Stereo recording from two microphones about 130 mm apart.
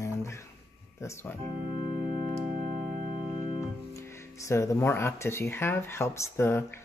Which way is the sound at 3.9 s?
25° left (ahead or behind).